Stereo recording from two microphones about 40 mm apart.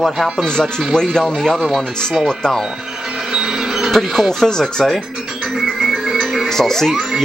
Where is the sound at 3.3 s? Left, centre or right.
Centre.